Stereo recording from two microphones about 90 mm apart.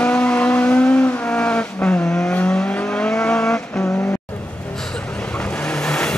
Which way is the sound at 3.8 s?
20° left (ahead or behind).